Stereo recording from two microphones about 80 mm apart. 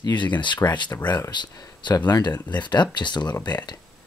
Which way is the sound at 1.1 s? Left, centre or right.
Left.